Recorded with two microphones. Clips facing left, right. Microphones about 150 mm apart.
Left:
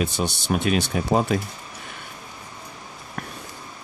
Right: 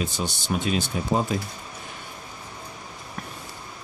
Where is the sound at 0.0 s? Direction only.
65° left (ahead or behind).